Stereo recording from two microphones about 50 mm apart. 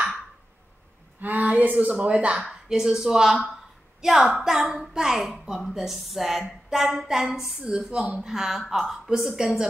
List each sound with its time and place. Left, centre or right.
1.2 s speech: right
2.4 s a woman's voice: centre
8.3 s a woman's voice: centre